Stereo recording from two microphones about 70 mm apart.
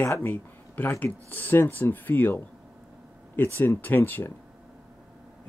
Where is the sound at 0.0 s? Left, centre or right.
Left.